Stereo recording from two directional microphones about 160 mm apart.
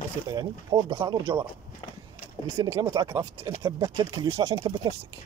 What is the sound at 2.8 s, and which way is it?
Speech, 25° right (ahead or behind).